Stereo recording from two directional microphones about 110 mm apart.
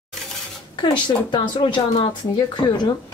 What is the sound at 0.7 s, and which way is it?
Speech, 45° left (ahead or behind).